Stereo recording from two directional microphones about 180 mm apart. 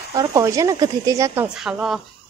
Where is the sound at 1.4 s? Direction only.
5° right (ahead or behind).